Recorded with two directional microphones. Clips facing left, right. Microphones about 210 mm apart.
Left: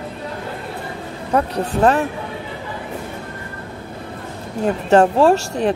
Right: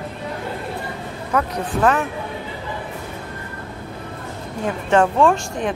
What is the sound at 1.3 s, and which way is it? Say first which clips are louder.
Speech: left 3 dB; 35° left (ahead or behind).